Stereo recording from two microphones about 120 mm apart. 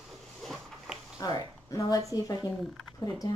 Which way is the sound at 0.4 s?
Centre (ahead or behind).